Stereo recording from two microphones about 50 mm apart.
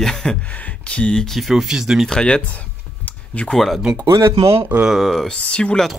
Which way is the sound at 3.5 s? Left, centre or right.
Centre.